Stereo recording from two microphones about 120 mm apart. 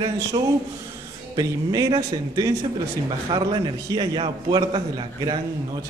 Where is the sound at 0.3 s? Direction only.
40° right (ahead or behind).